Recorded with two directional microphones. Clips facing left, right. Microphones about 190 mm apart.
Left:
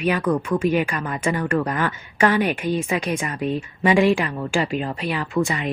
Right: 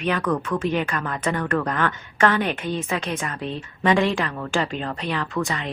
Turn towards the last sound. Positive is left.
turn(degrees=15)  # may be behind; listen again after turning